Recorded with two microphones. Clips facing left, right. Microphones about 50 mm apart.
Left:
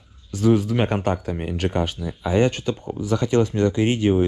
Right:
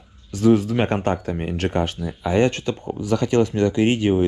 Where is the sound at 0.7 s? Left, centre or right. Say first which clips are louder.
Right 1 dB; right.